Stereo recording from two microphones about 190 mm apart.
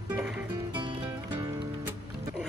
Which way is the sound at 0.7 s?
25° right (ahead or behind).